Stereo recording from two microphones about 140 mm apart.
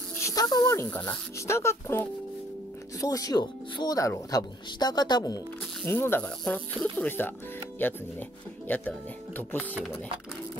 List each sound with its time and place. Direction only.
0.2 s a sound: 25° left (ahead or behind)
0.8 s speech: 10° left (ahead or behind); by 5.4 s 30° left (ahead or behind)
5.9 s speech: 15° left (ahead or behind)